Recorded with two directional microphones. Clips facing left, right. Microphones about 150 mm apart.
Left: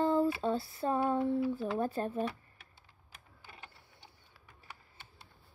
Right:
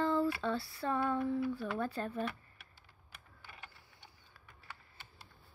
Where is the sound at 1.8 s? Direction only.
40° left (ahead or behind).